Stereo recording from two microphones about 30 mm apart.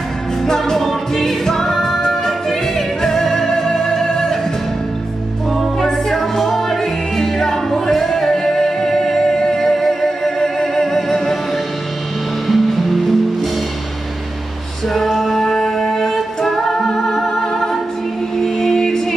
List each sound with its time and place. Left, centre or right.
0.7 s music: centre
5.8 s music: centre
12.4 s music: centre
14.9 s music: centre
15.3 s music: centre